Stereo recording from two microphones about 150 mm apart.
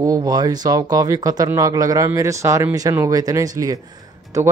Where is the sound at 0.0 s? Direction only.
25° right (ahead or behind).